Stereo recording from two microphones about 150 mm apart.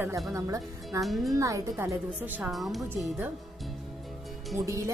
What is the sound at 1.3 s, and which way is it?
Speech, 20° right (ahead or behind).